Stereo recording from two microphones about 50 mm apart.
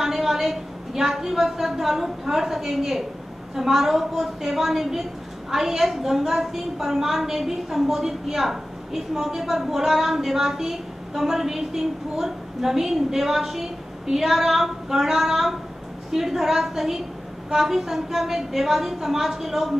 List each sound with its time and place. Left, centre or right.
0.0 s a woman's voice: centre